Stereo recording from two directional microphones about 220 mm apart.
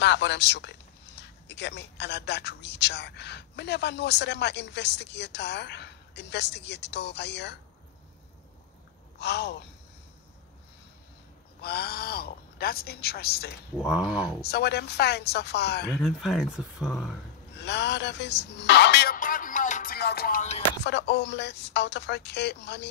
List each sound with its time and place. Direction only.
0.0 s speech: 50° left (ahead or behind)
9.2 s speech: 50° left (ahead or behind)
11.6 s speech: 45° left (ahead or behind)
13.8 s speech: 5° right (ahead or behind)
14.4 s speech: 45° left (ahead or behind)
16.0 s speech: centre (ahead or behind)
17.6 s speech: 50° left (ahead or behind); by 20.6 s 35° left (ahead or behind)
20.8 s speech: 50° left (ahead or behind)